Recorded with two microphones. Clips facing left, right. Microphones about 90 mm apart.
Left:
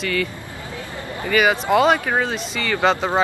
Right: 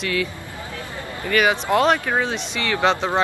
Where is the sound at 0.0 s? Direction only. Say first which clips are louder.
Left 1 dB; centre (ahead or behind).